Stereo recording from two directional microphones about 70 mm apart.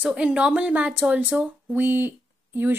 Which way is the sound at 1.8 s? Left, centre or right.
Right.